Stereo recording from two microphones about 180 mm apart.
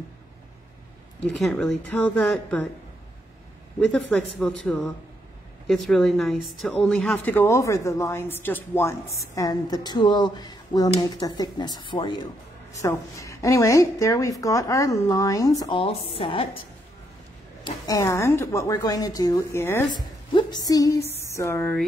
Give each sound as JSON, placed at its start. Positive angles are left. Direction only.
{"t": 1.2, "sound": "a woman's voice", "side_deg": 5}
{"t": 3.9, "sound": "a woman's voice", "side_deg": 5}
{"t": 17.6, "sound": "a woman's voice", "side_deg": 20}
{"t": 19.9, "sound": "speech", "side_deg": 25}
{"t": 21.1, "sound": "a sound", "side_deg": 15}